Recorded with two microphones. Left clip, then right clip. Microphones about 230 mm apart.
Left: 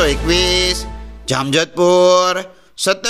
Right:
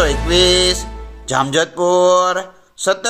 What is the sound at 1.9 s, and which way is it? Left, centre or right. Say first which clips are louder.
Mantra: left 1 dB; left.